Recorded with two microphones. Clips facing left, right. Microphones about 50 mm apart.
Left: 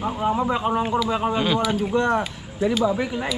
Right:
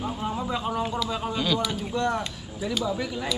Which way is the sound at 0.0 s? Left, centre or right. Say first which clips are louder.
Left 7 dB; left.